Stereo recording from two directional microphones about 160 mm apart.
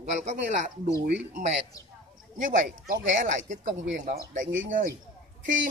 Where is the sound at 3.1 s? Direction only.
50° right (ahead or behind).